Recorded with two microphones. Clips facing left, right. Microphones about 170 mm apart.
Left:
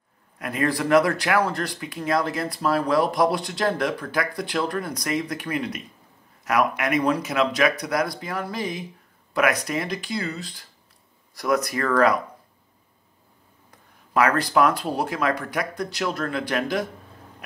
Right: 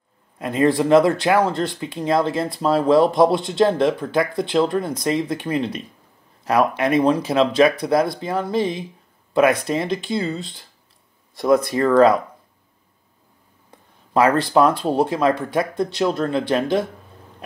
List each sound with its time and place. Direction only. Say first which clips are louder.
0.4 s speech: right 7 dB; 25° right (ahead or behind)
13.7 s speech: right 5 dB; 25° right (ahead or behind)